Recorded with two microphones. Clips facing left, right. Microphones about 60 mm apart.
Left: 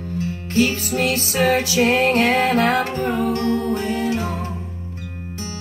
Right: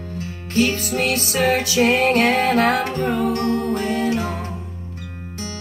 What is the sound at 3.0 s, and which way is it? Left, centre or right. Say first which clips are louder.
Music: even; right.